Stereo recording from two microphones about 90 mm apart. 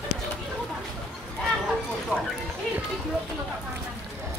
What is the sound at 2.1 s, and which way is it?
Speech, 15° right (ahead or behind).